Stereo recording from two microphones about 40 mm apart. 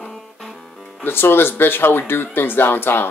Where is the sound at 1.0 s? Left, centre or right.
Left.